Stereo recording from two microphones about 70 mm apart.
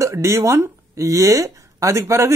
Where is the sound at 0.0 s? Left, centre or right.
Right.